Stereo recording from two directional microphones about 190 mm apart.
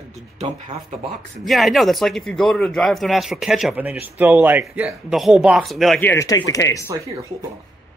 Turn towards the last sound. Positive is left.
turn(degrees=-15)  # may be behind; listen again after turning